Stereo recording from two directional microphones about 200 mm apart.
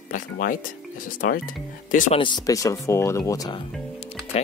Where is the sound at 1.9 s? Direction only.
40° left (ahead or behind).